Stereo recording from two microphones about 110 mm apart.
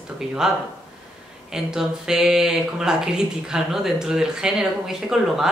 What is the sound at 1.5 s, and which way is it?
Speech, 5° right (ahead or behind).